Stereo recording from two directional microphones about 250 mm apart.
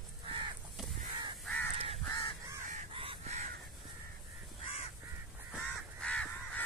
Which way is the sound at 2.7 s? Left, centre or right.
Right.